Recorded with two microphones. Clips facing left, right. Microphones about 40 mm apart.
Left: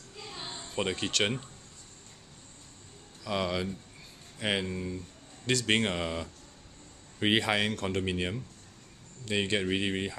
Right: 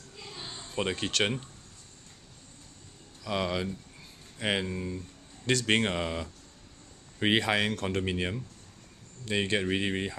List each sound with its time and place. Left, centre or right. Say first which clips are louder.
0.3 s a sound: left 1 dB; centre
0.6 s speech: right 1 dB; centre
3.3 s speech: even; centre